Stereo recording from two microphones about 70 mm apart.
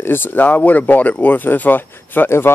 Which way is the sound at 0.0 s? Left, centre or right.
Left.